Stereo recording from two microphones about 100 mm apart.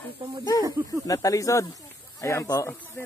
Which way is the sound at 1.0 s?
35° left (ahead or behind).